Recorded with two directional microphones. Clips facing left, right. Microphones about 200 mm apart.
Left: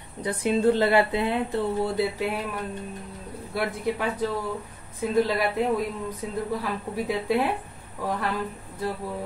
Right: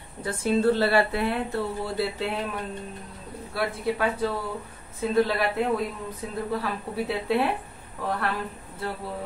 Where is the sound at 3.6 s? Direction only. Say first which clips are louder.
Even; 20° left (ahead or behind).